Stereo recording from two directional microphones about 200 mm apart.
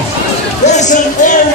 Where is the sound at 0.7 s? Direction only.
35° left (ahead or behind).